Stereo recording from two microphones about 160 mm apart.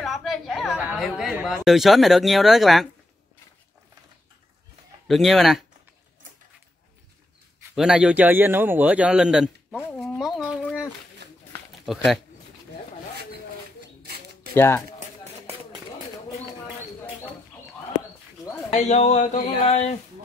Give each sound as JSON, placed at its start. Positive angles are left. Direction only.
{"t": 0.0, "sound": "a sound", "side_deg": 0}
{"t": 0.9, "sound": "speech", "side_deg": 0}
{"t": 5.0, "sound": "speech", "side_deg": 0}
{"t": 7.7, "sound": "speech", "side_deg": -5}
{"t": 9.8, "sound": "a sound", "side_deg": 5}
{"t": 11.8, "sound": "speech", "side_deg": 0}
{"t": 14.5, "sound": "speech", "side_deg": 15}
{"t": 18.7, "sound": "speech", "side_deg": 45}